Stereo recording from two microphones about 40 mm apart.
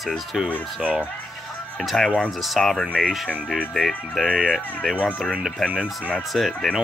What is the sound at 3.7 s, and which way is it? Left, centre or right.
Speech, centre.